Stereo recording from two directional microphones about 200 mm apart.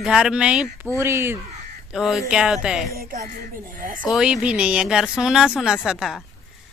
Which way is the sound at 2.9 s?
45° right (ahead or behind).